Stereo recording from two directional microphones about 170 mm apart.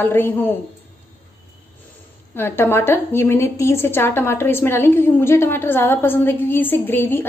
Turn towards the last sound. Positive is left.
turn(degrees=10)  # may be behind; listen again after turning